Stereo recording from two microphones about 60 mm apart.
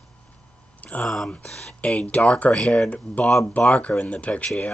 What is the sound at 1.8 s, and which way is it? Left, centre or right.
Speech, left.